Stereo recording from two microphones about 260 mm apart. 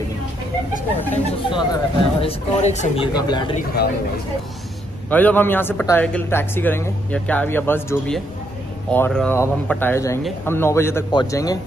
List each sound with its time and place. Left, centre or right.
1.1 s speech: centre
5.1 s speech: centre